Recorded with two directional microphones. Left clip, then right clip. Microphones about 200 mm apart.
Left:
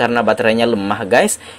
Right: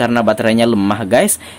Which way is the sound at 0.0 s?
20° right (ahead or behind).